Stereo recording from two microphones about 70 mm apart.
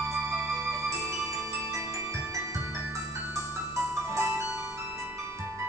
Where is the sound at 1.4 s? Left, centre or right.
Right.